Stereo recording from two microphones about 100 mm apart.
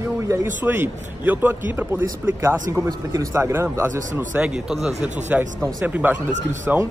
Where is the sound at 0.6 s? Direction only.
20° right (ahead or behind).